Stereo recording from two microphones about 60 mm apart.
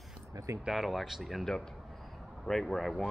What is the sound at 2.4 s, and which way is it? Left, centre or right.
Speech, centre.